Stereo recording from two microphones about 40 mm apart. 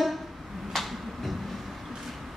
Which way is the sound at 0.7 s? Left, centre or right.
Centre.